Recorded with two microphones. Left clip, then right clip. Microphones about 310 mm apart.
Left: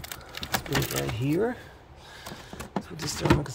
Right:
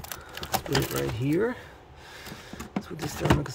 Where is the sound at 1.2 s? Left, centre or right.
Centre.